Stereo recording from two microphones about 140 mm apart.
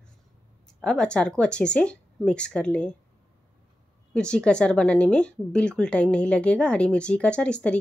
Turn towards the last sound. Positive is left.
turn(degrees=5)  # may be behind; listen again after turning